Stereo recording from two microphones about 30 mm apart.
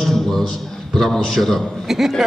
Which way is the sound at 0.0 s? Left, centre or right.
Centre.